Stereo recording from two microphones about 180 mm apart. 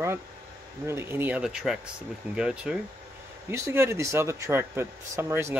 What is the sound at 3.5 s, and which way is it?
Speech, 15° right (ahead or behind).